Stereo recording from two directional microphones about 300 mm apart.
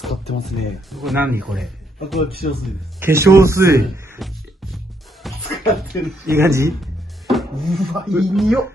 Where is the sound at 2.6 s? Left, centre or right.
Centre.